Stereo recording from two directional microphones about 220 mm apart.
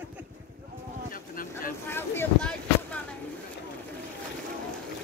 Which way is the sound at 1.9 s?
5° left (ahead or behind).